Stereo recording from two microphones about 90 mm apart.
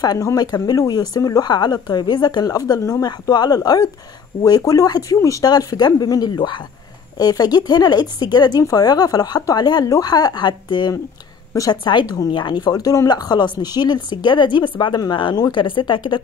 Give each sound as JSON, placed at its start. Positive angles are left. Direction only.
{"t": 0.0, "sound": "speech", "side_deg": 40}
{"t": 3.1, "sound": "a woman's voice", "side_deg": 50}